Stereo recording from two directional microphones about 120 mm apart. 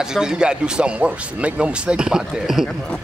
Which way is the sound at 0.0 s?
5° right (ahead or behind).